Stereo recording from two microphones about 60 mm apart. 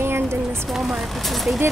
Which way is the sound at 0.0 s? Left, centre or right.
Right.